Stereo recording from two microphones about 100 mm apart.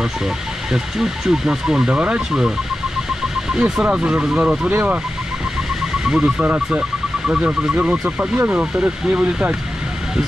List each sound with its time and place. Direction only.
0.7 s speech: 5° right (ahead or behind)
6.0 s speech: 10° right (ahead or behind)